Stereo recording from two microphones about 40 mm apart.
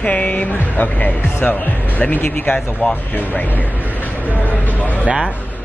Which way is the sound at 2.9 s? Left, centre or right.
Left.